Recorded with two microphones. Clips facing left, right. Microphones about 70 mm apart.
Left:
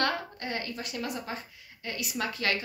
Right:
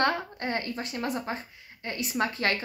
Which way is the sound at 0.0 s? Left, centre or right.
Right.